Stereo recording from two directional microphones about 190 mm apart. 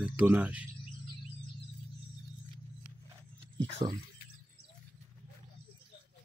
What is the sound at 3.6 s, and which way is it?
Speech, 30° right (ahead or behind).